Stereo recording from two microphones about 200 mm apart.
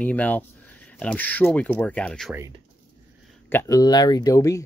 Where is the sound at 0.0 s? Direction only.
5° left (ahead or behind).